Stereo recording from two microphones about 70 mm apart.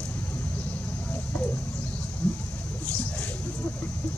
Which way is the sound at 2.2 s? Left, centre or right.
Centre.